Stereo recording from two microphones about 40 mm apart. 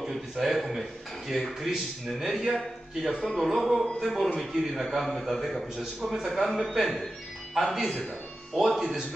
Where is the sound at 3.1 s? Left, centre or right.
Centre.